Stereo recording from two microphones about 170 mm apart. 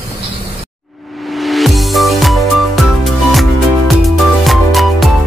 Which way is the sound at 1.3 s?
Centre (ahead or behind).